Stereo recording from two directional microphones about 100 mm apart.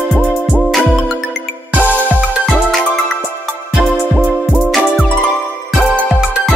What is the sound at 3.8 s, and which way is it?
Music, 15° right (ahead or behind).